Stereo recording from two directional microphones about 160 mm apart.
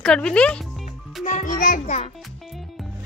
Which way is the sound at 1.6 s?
55° left (ahead or behind).